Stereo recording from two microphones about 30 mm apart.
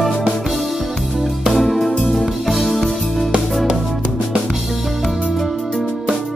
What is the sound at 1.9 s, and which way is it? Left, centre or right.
Music, left.